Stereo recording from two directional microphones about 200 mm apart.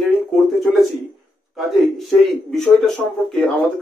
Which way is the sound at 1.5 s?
Centre (ahead or behind).